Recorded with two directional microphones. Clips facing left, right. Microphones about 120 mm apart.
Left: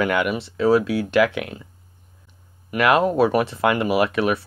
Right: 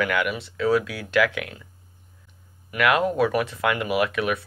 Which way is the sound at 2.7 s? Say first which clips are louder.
Left 4 dB; 30° left (ahead or behind).